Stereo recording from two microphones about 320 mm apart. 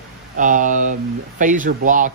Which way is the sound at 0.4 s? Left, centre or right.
Right.